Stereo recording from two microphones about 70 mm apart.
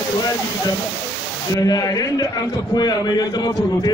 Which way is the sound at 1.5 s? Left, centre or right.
Left.